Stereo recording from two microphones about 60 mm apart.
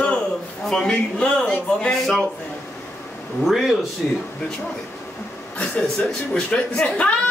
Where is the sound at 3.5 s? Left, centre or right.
Centre.